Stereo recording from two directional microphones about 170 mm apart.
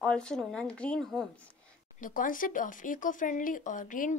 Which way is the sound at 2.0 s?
50° left (ahead or behind).